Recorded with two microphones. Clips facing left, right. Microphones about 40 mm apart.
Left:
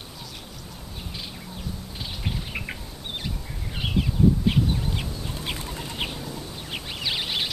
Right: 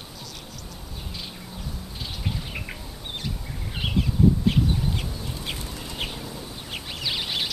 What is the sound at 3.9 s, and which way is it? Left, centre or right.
Chicken, centre.